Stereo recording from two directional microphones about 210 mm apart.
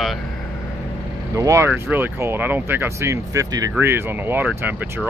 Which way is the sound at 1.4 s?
15° right (ahead or behind).